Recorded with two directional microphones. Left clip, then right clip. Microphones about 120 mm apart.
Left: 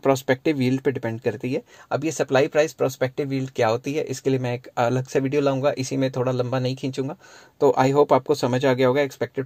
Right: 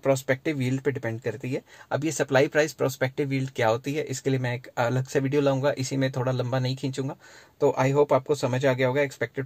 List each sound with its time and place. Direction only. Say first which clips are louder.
0.0 s speech: left 4 dB; 35° left (ahead or behind)
1.9 s speech: left 3 dB; 10° left (ahead or behind)
7.6 s speech: left 4 dB; 35° left (ahead or behind)